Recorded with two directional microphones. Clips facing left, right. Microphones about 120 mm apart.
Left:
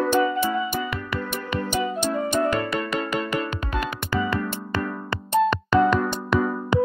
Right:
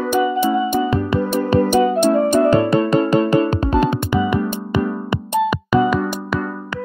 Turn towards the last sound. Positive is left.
turn(degrees=-5)  # may be behind; listen again after turning